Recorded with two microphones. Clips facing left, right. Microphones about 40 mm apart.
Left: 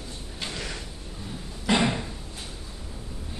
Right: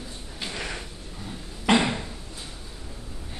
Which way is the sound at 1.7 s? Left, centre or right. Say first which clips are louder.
Right 3 dB; right.